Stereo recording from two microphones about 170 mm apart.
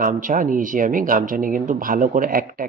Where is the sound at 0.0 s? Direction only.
50° right (ahead or behind).